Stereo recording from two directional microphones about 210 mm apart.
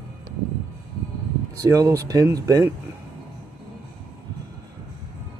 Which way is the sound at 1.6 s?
15° right (ahead or behind).